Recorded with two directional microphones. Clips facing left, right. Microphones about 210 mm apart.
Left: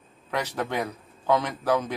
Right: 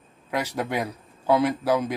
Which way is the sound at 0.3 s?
10° right (ahead or behind).